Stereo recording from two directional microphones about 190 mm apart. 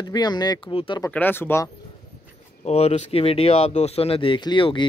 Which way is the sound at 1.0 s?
10° left (ahead or behind).